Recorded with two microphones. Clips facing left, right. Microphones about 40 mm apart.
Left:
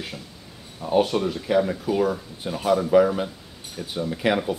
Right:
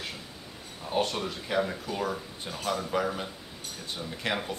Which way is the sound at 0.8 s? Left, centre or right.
Centre.